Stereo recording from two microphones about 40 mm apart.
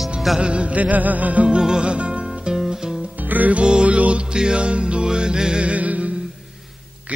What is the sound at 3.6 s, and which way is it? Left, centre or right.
Music, right.